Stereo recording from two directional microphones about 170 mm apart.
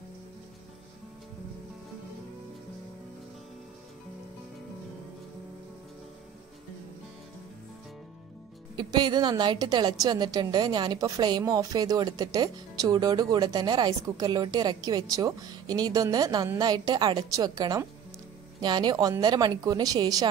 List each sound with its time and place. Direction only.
8.7 s a woman's voice: 25° right (ahead or behind)